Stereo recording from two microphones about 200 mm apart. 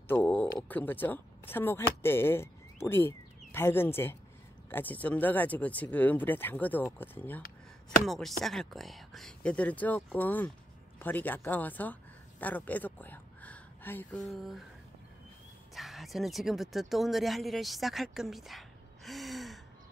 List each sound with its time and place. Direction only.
0.1 s speech: 5° left (ahead or behind)
15.7 s speech: centre (ahead or behind)